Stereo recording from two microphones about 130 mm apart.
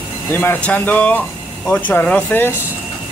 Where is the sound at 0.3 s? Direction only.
15° left (ahead or behind).